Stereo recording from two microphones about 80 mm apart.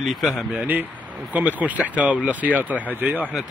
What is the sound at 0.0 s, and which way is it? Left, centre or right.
Speech, centre.